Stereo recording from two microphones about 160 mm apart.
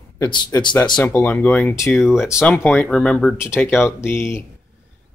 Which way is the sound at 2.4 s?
10° left (ahead or behind).